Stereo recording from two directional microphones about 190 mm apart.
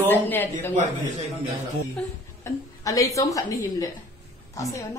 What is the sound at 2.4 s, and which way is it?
A woman's voice, 15° left (ahead or behind).